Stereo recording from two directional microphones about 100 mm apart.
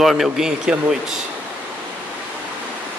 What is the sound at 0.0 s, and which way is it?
Speech, centre (ahead or behind).